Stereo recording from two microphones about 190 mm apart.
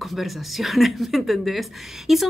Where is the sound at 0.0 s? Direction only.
Centre (ahead or behind).